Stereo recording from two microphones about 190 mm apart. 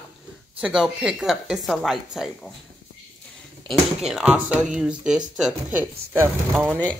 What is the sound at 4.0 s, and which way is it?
Speech, 5° right (ahead or behind).